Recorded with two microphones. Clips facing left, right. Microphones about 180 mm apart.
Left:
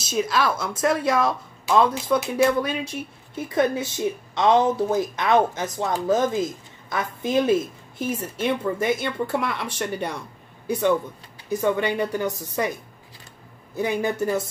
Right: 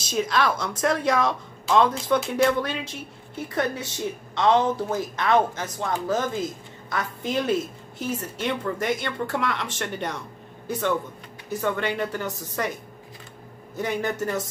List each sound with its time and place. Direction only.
0.0 s speech: 5° left (ahead or behind)
4.4 s speech: 15° left (ahead or behind)
13.7 s speech: 10° left (ahead or behind)